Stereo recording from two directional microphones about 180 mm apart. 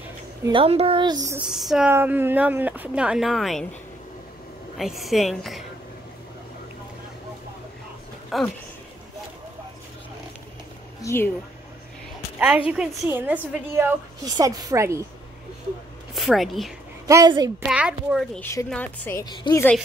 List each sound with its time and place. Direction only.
0.4 s a woman's voice: 30° right (ahead or behind)
1.5 s speech: 5° right (ahead or behind)
4.7 s a woman's voice: centre (ahead or behind)
8.3 s a woman's voice: centre (ahead or behind)
11.0 s a woman's voice: 15° left (ahead or behind)
12.4 s speech: 5° right (ahead or behind)
16.2 s a woman's voice: centre (ahead or behind)
17.1 s a woman's voice: 20° right (ahead or behind)
17.6 s a woman's voice: 5° right (ahead or behind)
18.4 s a woman's voice: 15° left (ahead or behind)
19.3 s a woman's voice: 25° left (ahead or behind)